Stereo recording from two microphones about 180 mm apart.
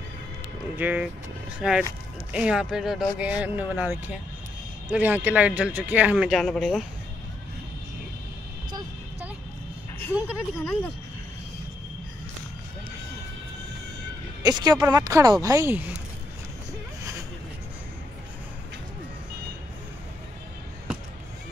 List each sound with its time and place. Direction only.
0.7 s speech: 10° right (ahead or behind)
10.1 s speech: 5° right (ahead or behind)
14.4 s a woman's voice: 20° right (ahead or behind)